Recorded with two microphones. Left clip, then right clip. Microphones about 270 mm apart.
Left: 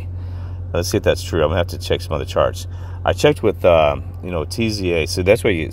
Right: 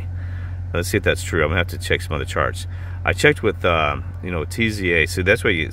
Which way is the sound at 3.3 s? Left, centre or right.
Centre.